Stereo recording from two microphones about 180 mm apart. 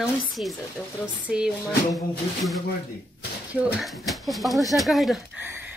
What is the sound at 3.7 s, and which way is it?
A woman's voice, centre (ahead or behind).